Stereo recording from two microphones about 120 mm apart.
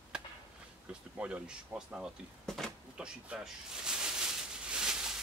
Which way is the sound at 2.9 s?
5° right (ahead or behind).